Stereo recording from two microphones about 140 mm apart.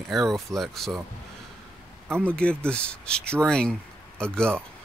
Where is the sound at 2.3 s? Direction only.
10° left (ahead or behind).